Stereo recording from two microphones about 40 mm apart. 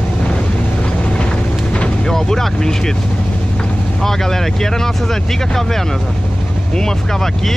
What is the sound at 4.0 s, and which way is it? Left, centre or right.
Speech, centre.